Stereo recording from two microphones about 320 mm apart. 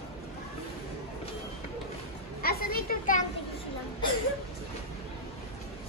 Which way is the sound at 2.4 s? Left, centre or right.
Left.